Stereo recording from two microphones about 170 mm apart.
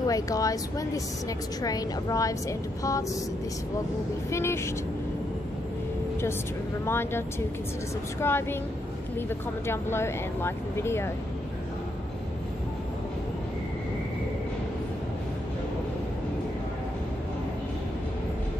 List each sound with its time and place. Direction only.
0.0 s speech: 20° left (ahead or behind)
4.3 s speech: 15° left (ahead or behind)
6.9 s speech: 15° left (ahead or behind)
9.7 s speech: 15° left (ahead or behind)